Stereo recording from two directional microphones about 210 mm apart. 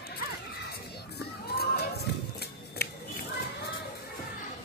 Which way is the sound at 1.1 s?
50° left (ahead or behind).